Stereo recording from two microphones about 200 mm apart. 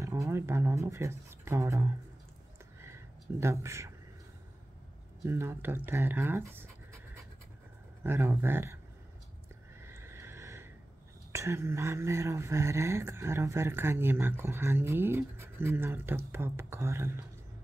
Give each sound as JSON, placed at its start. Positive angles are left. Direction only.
{"t": 0.0, "sound": "speech", "side_deg": -15}
{"t": 2.8, "sound": "a sound", "side_deg": -15}
{"t": 5.2, "sound": "speech", "side_deg": -10}
{"t": 8.0, "sound": "speech", "side_deg": -10}
{"t": 10.0, "sound": "a sound", "side_deg": -15}
{"t": 11.3, "sound": "speech", "side_deg": -15}